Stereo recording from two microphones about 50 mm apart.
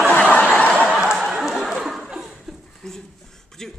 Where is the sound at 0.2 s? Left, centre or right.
Centre.